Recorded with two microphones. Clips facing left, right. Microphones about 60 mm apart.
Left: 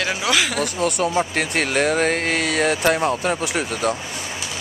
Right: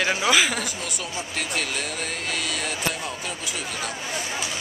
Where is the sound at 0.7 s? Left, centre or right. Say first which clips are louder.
Left 12 dB; left.